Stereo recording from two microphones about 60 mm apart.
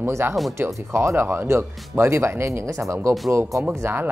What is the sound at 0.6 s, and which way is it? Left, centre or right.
Speech, right.